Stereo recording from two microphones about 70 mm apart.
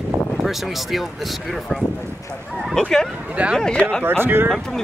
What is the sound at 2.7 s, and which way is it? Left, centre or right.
Speech, centre.